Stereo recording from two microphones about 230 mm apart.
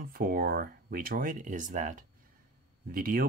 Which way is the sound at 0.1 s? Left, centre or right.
Right.